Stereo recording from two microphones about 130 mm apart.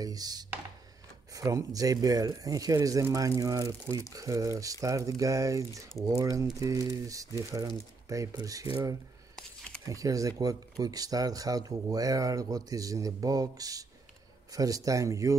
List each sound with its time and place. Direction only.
0.0 s a sound: 30° right (ahead or behind)
1.3 s speech: 25° right (ahead or behind)
9.8 s speech: 25° right (ahead or behind)